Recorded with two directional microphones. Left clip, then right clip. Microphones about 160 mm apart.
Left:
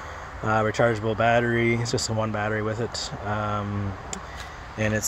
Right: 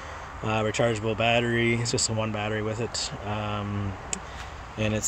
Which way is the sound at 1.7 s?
Centre (ahead or behind).